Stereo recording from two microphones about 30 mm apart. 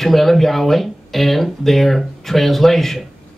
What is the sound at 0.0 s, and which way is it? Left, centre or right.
Speech, centre.